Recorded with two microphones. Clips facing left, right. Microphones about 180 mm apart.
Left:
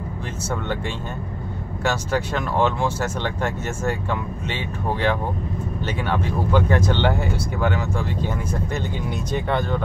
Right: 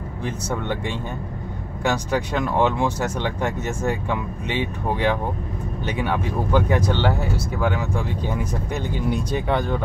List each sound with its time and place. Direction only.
1.9 s speech: 15° right (ahead or behind)